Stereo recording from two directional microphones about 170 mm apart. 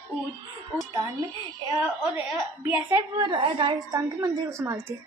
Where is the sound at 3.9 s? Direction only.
20° right (ahead or behind).